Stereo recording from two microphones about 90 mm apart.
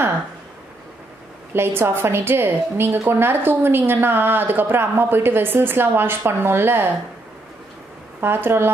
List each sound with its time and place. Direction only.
1.5 s a woman's voice: 25° right (ahead or behind)
8.2 s a woman's voice: 25° right (ahead or behind)